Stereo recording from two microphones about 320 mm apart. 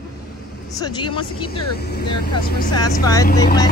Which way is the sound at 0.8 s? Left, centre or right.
Centre.